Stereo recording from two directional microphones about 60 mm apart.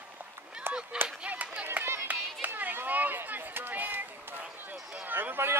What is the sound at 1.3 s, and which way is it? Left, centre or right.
Run, right.